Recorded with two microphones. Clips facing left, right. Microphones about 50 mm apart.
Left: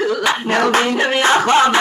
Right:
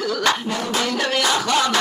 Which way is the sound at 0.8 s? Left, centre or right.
Left.